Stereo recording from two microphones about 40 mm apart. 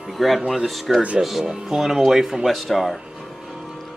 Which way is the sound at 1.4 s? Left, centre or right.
Centre.